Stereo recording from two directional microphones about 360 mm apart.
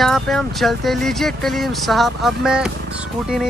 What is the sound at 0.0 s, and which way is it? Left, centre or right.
Speech, centre.